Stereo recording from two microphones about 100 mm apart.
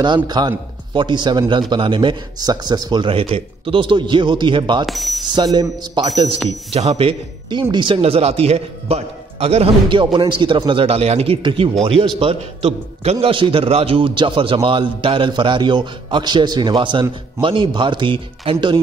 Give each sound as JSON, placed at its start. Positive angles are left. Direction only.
{"t": 0.0, "sound": "a man's voice", "side_deg": -45}
{"t": 4.8, "sound": "speech", "side_deg": 0}
{"t": 5.3, "sound": "a man's voice", "side_deg": -45}
{"t": 6.1, "sound": "a man's voice", "side_deg": -65}
{"t": 6.7, "sound": "a man's voice", "side_deg": -80}
{"t": 8.0, "sound": "a man's voice", "side_deg": -90}
{"t": 9.9, "sound": "a man's voice", "side_deg": -55}
{"t": 10.7, "sound": "speech", "side_deg": -75}
{"t": 11.4, "sound": "a man's voice", "side_deg": -60}
{"t": 12.2, "sound": "a man's voice", "side_deg": -80}